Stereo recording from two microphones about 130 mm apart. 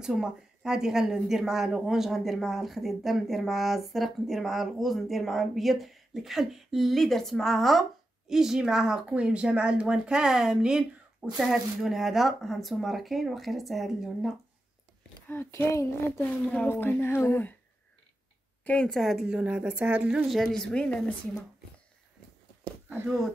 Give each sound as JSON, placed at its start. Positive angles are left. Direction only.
{"t": 0.0, "sound": "a woman's voice", "side_deg": -5}
{"t": 15.2, "sound": "speech", "side_deg": 20}
{"t": 18.6, "sound": "speech", "side_deg": 10}
{"t": 22.8, "sound": "speech", "side_deg": -15}